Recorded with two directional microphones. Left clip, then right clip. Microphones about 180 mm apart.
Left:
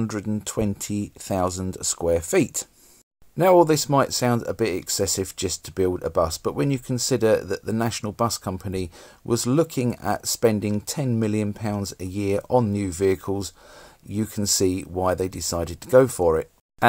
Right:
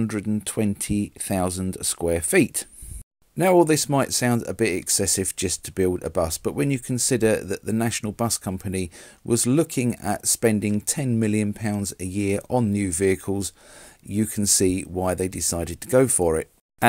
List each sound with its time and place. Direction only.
0.0 s speech: 25° right (ahead or behind)